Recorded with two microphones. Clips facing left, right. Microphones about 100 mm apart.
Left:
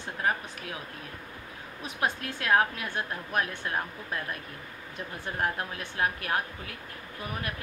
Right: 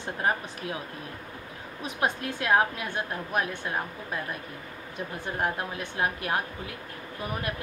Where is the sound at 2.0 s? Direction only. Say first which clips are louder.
Right 2 dB; 10° right (ahead or behind).